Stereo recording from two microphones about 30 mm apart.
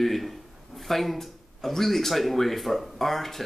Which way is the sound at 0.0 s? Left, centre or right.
Centre.